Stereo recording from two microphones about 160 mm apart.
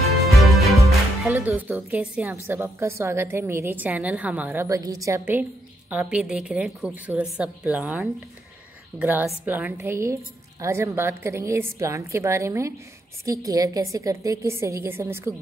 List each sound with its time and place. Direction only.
0.3 s music: centre (ahead or behind)
1.3 s a woman's voice: 10° right (ahead or behind)